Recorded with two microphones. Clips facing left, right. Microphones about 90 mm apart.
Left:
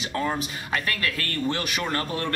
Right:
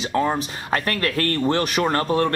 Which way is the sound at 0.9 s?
45° right (ahead or behind).